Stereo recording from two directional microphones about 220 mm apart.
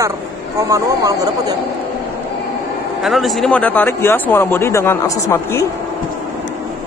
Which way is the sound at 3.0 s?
Centre (ahead or behind).